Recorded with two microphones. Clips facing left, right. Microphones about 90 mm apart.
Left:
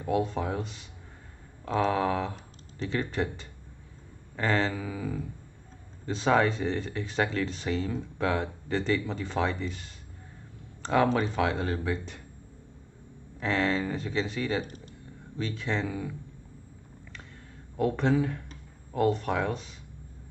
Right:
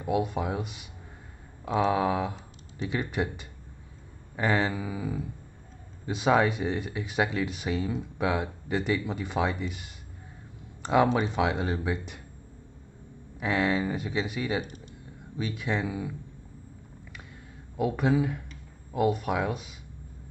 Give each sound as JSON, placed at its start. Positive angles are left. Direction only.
{"t": 0.0, "sound": "speech", "side_deg": -15}
{"t": 13.4, "sound": "speech", "side_deg": -15}
{"t": 17.7, "sound": "speech", "side_deg": -10}